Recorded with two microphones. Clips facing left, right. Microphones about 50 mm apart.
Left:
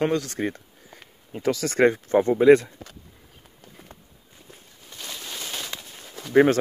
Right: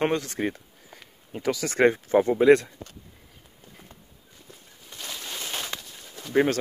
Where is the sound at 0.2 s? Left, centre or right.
Centre.